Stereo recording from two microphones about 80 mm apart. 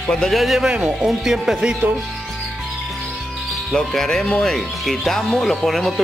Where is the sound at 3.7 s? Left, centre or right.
Centre.